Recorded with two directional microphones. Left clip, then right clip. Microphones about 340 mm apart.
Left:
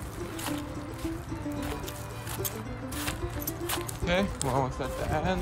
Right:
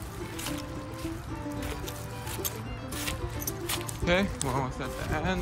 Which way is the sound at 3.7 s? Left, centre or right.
Centre.